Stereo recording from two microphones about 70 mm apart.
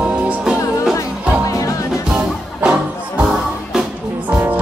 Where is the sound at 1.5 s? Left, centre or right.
Left.